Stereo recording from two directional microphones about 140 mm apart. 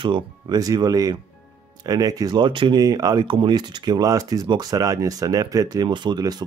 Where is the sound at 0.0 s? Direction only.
30° right (ahead or behind).